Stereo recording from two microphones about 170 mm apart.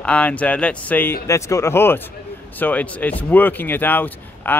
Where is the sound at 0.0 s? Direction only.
10° left (ahead or behind).